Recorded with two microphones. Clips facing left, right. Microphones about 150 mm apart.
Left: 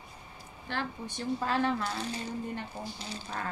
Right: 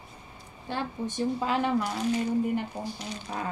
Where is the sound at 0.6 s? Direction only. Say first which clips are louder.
Right 4 dB; 20° right (ahead or behind).